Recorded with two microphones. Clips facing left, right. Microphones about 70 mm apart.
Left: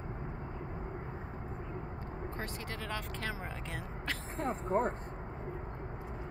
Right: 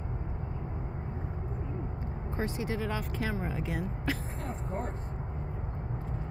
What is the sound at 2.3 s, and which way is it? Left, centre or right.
Speech, centre.